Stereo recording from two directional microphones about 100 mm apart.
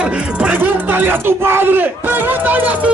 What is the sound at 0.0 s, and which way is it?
Speech, 15° right (ahead or behind).